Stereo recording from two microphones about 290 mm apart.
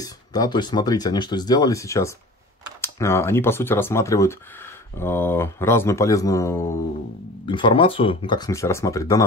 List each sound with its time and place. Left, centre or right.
0.0 s speech: centre